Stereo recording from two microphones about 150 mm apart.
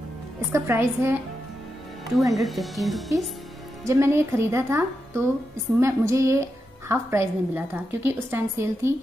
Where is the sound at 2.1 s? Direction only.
Centre (ahead or behind).